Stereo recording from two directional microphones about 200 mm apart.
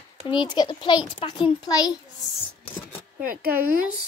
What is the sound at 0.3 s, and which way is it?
A child's voice, 25° left (ahead or behind).